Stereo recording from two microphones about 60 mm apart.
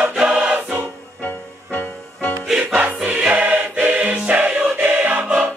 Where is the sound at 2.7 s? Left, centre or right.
Right.